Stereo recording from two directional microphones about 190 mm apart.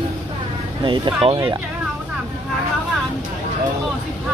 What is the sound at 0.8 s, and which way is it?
Speech, 25° right (ahead or behind).